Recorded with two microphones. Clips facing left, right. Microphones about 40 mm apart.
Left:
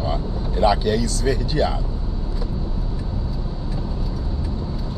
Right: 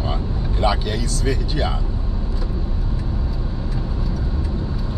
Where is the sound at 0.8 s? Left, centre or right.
Right.